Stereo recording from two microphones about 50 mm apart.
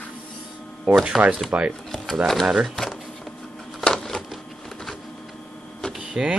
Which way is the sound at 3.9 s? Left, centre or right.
Centre.